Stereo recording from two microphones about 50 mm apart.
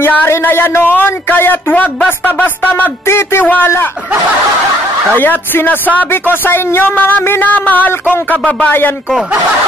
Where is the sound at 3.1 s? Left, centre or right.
Left.